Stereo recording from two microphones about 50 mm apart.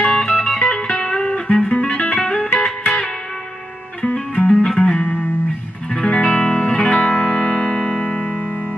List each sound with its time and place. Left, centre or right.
0.0 s music: centre